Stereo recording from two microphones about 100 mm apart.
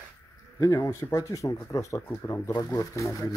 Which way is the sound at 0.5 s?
40° left (ahead or behind).